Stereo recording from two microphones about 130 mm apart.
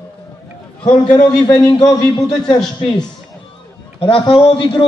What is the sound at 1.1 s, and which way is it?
A man's voice, 30° left (ahead or behind).